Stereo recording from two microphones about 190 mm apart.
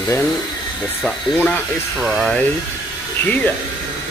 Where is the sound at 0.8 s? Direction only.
Centre (ahead or behind).